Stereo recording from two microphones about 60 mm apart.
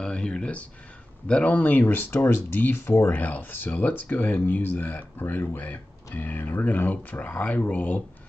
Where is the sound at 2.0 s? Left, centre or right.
Left.